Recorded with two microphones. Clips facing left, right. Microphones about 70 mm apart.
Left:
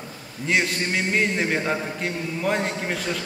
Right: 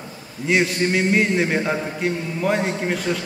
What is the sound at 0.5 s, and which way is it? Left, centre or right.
A man's voice, centre.